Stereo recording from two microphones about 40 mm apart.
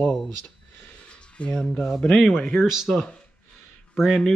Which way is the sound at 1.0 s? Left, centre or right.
Left.